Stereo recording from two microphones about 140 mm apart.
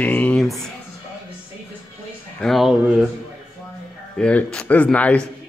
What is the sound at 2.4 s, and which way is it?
Speech, centre (ahead or behind).